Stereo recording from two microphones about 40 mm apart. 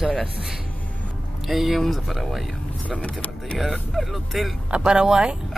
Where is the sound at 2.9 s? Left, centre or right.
Left.